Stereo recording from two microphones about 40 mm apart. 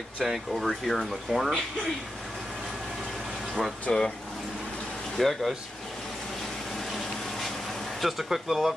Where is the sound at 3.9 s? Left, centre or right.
Centre.